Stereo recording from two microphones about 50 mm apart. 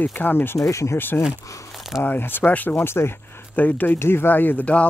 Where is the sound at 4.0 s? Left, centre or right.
Left.